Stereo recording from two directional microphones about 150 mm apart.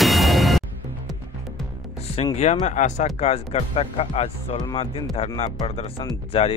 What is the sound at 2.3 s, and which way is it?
Speech, 50° left (ahead or behind).